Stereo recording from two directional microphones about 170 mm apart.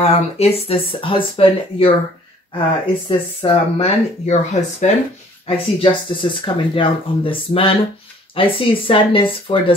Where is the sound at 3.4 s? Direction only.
35° left (ahead or behind).